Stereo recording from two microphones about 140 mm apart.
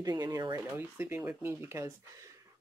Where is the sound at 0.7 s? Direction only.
15° right (ahead or behind).